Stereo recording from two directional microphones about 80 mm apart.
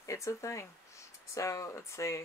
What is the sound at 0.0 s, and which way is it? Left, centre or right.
Speech, left.